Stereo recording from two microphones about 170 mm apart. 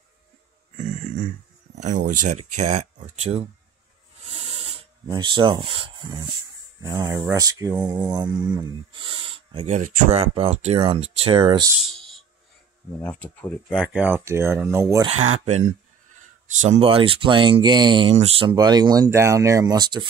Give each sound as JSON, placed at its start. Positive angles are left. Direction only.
{"t": 1.8, "sound": "speech", "side_deg": -45}
{"t": 4.4, "sound": "filing", "side_deg": -35}
{"t": 6.8, "sound": "speech", "side_deg": -20}
{"t": 7.7, "sound": "mantra", "side_deg": -5}
{"t": 8.1, "sound": "speech", "side_deg": -25}
{"t": 9.7, "sound": "speech", "side_deg": -45}
{"t": 11.8, "sound": "a sound", "side_deg": 0}
{"t": 13.0, "sound": "speech", "side_deg": 10}
{"t": 14.7, "sound": "mantra", "side_deg": -15}
{"t": 15.0, "sound": "speech", "side_deg": -40}
{"t": 16.6, "sound": "speech", "side_deg": -35}